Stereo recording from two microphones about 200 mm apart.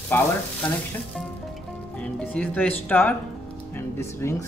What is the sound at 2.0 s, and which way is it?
Speech, 5° left (ahead or behind).